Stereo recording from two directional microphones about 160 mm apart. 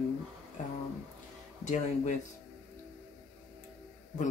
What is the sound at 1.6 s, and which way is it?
Speech, 50° left (ahead or behind).